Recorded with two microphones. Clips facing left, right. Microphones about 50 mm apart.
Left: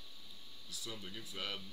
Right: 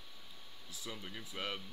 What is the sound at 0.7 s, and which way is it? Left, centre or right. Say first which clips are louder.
Speech: right 1 dB; right.